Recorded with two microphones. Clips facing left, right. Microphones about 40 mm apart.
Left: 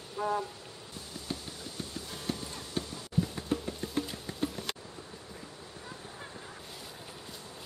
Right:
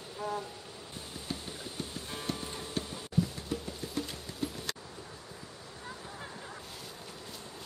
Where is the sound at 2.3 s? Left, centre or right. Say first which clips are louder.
Right 1 dB; right.